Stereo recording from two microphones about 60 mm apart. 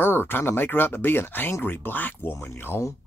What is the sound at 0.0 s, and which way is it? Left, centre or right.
Speech, left.